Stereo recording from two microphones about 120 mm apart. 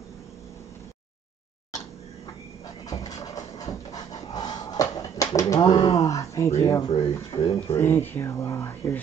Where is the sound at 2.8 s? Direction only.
30° left (ahead or behind).